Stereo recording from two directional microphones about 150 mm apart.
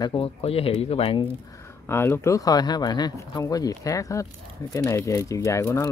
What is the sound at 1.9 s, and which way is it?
Speech, 15° left (ahead or behind).